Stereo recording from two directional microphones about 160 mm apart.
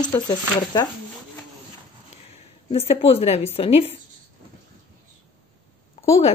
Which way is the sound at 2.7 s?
40° left (ahead or behind).